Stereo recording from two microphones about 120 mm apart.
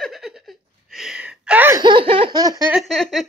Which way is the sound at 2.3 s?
35° right (ahead or behind).